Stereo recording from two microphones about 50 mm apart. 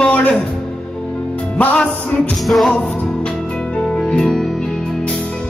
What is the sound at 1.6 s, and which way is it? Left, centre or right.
Music, left.